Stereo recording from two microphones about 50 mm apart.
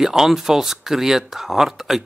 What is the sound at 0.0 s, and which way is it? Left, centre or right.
Speech, centre.